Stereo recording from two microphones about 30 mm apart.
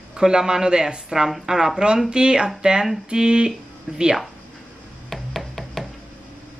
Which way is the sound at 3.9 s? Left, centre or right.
Right.